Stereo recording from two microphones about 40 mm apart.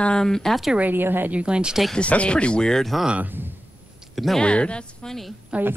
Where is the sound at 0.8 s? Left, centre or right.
Right.